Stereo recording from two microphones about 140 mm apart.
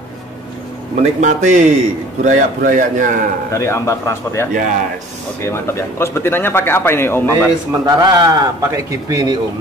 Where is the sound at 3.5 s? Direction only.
20° left (ahead or behind).